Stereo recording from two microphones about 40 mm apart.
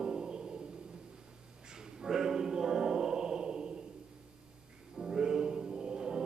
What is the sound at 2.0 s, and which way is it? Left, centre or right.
Choir, centre.